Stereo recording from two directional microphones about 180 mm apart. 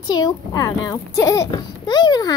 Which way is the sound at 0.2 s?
20° left (ahead or behind).